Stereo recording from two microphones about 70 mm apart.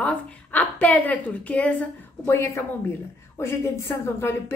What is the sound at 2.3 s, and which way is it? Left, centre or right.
A woman's voice, left.